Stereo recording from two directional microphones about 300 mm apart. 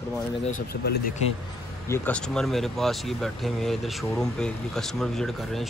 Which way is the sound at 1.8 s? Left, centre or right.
Centre.